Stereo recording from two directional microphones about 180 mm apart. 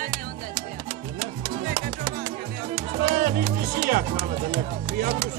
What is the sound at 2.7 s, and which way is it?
Music, 55° right (ahead or behind).